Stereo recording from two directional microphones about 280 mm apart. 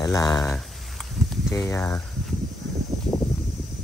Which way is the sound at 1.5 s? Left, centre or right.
Centre.